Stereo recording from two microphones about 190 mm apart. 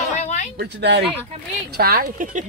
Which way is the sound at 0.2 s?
40° left (ahead or behind).